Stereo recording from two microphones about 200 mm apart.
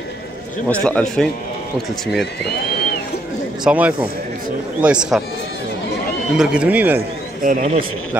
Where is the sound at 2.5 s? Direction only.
50° left (ahead or behind).